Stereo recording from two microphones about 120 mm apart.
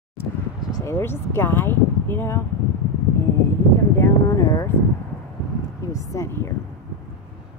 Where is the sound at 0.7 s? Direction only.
35° left (ahead or behind).